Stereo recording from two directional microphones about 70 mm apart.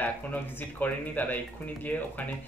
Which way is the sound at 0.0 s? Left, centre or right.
Left.